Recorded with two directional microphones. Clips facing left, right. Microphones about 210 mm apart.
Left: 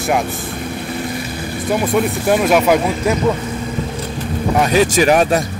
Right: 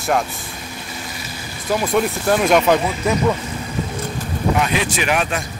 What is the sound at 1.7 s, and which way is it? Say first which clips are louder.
Speech: left 2 dB; centre (ahead or behind).